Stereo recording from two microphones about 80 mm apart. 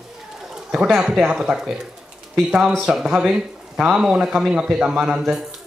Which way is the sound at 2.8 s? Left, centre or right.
Centre.